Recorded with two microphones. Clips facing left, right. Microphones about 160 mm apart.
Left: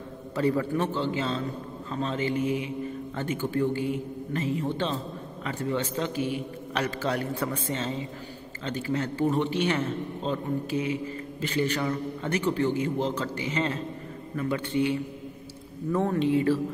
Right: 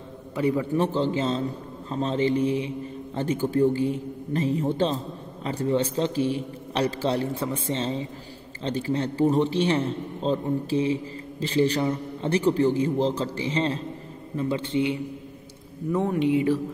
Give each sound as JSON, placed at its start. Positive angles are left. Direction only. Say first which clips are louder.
{"t": 0.4, "sound": "speech", "louder": "right 1 dB", "side_deg": -15}
{"t": 0.7, "sound": "a man's voice", "louder": "right 4 dB", "side_deg": -35}